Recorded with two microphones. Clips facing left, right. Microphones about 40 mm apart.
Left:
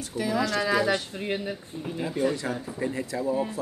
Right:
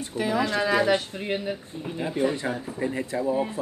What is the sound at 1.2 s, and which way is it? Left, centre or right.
Speech, centre.